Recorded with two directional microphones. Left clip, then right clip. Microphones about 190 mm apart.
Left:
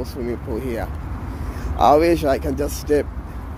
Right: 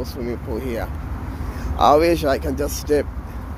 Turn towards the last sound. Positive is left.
turn(degrees=15)  # may be behind; listen again after turning